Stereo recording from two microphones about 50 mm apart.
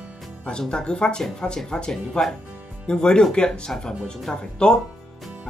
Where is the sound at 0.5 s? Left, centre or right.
Centre.